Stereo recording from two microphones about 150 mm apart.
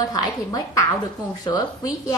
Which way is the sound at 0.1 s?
25° left (ahead or behind).